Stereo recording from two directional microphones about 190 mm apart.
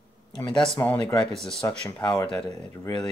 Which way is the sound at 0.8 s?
15° left (ahead or behind).